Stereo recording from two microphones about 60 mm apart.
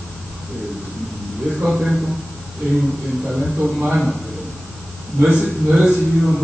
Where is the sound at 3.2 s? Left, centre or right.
Centre.